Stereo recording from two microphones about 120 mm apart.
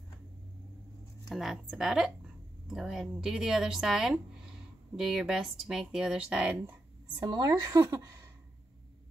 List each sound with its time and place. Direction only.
1.3 s a woman's voice: centre (ahead or behind)
7.2 s a woman's voice: 35° right (ahead or behind)